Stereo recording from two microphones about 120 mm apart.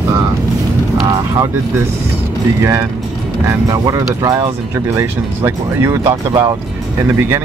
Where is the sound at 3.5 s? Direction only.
30° right (ahead or behind).